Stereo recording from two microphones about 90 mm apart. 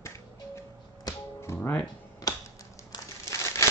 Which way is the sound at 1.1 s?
45° left (ahead or behind).